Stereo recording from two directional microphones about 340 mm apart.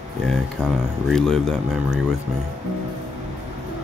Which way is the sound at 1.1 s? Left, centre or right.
Centre.